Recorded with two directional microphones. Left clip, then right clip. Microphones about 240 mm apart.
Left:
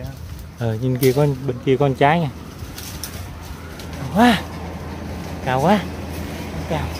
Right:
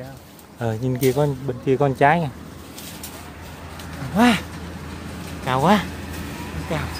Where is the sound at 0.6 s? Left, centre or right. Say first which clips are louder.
Left 2 dB; centre.